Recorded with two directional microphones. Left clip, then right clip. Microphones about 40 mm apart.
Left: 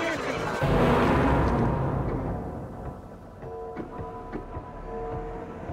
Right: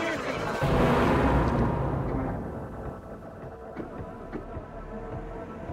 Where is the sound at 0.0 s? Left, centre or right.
Right.